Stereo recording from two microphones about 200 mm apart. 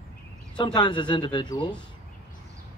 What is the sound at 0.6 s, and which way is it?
A man's voice, 20° left (ahead or behind).